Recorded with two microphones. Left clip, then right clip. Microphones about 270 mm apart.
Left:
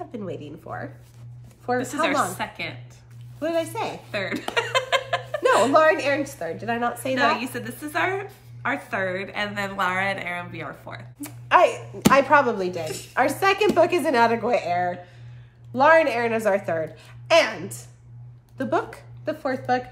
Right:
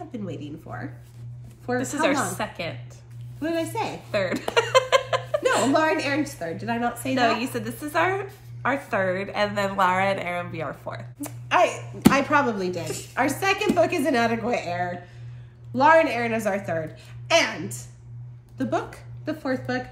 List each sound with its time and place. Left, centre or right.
0.1 s a woman's voice: left
1.8 s a woman's voice: centre
3.3 s a woman's voice: centre
4.1 s a sound: centre
5.7 s a woman's voice: centre
7.2 s a woman's voice: centre
11.2 s a woman's voice: centre
12.8 s a woman's voice: centre
13.1 s a woman's voice: centre